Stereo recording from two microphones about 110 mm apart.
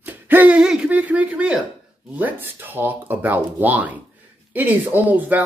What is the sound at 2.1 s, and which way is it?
Speech, 15° right (ahead or behind).